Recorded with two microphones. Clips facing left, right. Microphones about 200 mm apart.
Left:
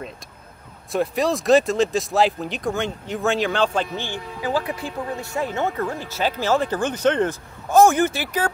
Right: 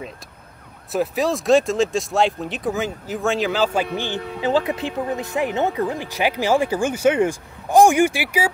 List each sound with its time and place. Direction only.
0.9 s speech: centre (ahead or behind)